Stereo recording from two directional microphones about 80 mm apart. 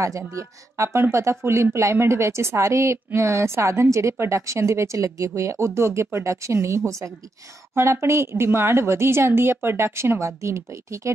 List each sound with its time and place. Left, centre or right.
0.4 s speech: right